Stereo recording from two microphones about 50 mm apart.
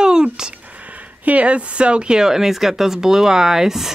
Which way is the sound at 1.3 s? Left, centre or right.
Right.